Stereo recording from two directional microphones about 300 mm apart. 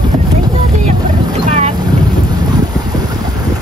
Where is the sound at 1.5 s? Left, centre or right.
Right.